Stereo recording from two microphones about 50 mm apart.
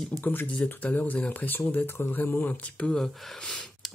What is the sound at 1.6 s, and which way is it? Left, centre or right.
Speech, left.